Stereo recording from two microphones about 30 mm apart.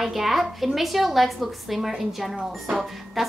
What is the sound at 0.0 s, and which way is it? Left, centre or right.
A woman's voice, centre.